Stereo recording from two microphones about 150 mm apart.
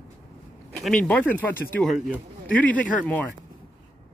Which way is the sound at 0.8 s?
5° left (ahead or behind).